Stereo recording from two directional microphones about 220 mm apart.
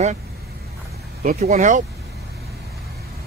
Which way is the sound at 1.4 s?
35° right (ahead or behind).